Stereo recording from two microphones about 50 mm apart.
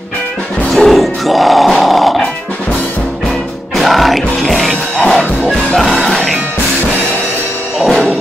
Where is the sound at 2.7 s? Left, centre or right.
Left.